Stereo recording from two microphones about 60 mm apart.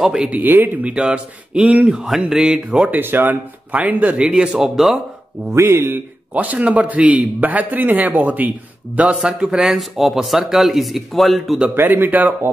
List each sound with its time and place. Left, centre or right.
0.0 s speech: centre
0.3 s speech: right
0.8 s a man's voice: centre
2.0 s speech: centre
2.9 s a man's voice: right; by 4.6 s centre
4.6 s speech: centre
5.5 s speech: right
6.3 s a man's voice: right; by 11.5 s centre
11.7 s speech: right